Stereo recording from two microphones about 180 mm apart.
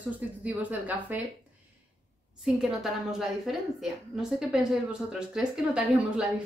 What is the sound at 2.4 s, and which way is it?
A woman's voice, centre (ahead or behind).